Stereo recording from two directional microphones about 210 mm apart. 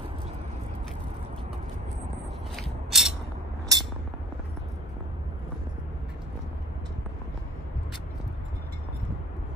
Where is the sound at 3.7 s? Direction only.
15° right (ahead or behind).